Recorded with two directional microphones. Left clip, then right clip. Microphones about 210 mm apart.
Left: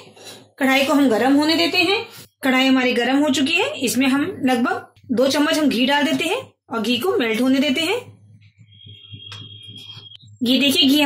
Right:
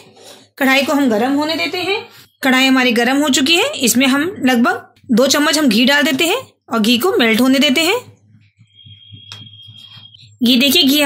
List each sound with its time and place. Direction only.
0.6 s a woman's voice: 40° right (ahead or behind)
2.4 s speech: 45° right (ahead or behind)
10.4 s speech: 45° right (ahead or behind)